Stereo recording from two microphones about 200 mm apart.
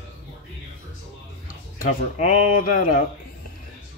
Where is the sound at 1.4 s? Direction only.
40° left (ahead or behind).